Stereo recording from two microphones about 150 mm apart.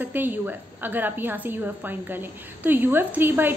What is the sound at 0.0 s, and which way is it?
A woman's voice, 10° right (ahead or behind).